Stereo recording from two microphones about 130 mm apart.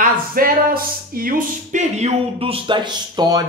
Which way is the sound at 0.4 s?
90° right.